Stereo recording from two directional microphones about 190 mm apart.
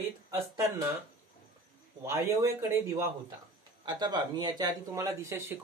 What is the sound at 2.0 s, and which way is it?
Speech, 15° right (ahead or behind).